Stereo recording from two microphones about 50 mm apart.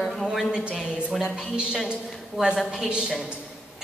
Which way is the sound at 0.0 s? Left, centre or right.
Centre.